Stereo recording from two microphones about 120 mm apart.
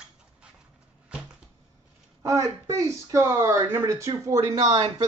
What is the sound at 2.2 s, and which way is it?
Speech, 25° right (ahead or behind).